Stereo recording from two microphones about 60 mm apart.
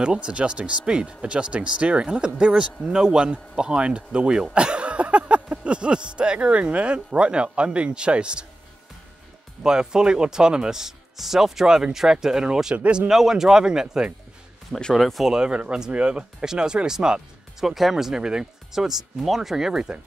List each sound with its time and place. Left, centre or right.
0.0 s speech: centre
9.6 s speech: centre
12.7 s speech: right
13.1 s speech: centre
14.7 s speech: centre
15.0 s speech: centre
15.3 s speech: centre